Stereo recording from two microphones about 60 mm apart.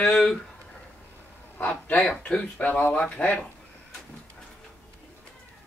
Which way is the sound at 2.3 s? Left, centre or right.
Left.